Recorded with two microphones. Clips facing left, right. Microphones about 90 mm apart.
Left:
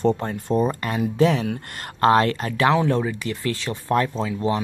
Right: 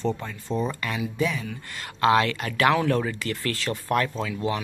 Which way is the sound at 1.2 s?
70° left (ahead or behind).